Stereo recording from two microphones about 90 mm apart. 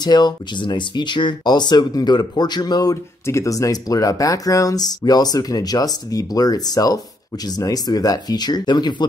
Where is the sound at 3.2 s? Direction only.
35° left (ahead or behind).